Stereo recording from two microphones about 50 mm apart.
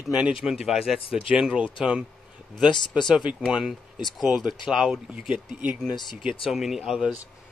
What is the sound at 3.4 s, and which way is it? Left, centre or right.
Speech, centre.